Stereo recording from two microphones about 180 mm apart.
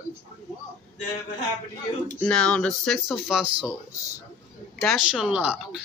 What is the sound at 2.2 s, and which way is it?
Speech, 5° left (ahead or behind).